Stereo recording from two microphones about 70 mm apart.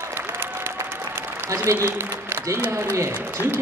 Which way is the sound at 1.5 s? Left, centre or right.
Right.